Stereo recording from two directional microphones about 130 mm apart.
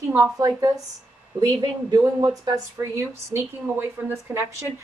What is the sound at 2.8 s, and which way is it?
A woman's voice, 20° right (ahead or behind).